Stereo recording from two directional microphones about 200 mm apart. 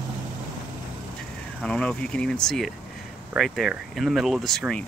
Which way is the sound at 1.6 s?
5° left (ahead or behind).